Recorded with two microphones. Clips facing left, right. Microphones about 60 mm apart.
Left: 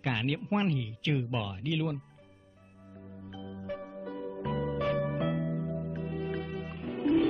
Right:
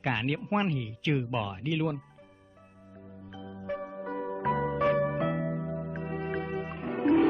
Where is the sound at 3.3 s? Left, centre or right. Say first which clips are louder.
Even; centre.